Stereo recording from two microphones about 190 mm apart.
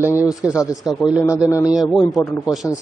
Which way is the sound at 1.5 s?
20° left (ahead or behind).